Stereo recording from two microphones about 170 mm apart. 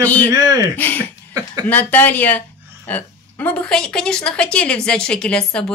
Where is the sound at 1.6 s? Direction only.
10° left (ahead or behind).